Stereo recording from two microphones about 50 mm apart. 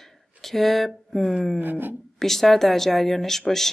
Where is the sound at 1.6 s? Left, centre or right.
Right.